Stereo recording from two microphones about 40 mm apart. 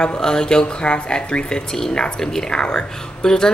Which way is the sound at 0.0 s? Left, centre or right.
Centre.